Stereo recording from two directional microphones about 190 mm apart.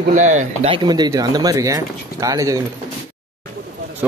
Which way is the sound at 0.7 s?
20° right (ahead or behind).